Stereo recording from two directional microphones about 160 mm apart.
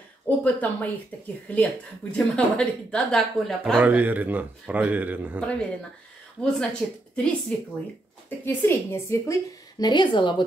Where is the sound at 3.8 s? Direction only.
10° right (ahead or behind).